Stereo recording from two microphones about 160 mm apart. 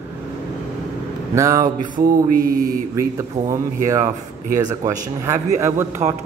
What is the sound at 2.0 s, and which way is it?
Mantra, 60° right (ahead or behind).